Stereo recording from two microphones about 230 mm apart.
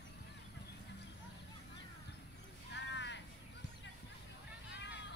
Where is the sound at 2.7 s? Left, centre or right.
Left.